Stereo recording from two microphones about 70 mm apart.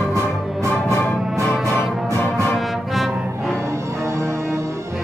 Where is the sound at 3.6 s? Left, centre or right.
Right.